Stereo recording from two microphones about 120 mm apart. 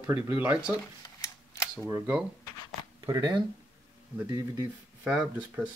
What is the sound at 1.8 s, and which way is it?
Speech, 20° right (ahead or behind).